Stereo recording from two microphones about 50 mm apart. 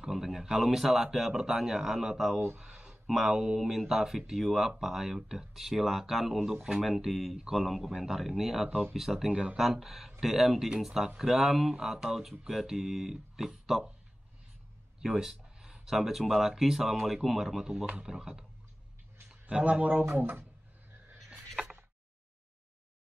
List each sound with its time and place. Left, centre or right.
0.0 s speech: centre
15.0 s speech: centre
19.6 s speech: right